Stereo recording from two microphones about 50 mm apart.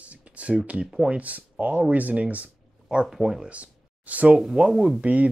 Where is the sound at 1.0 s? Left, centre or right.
Right.